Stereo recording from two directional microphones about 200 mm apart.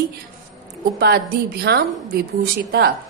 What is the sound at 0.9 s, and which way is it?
A woman's voice, 50° right (ahead or behind).